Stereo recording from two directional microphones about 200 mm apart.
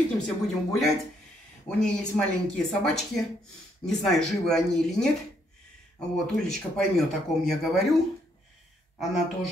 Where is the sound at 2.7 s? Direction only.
Centre (ahead or behind).